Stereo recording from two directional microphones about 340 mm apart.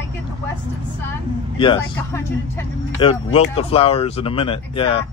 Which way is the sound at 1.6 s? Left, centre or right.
Centre.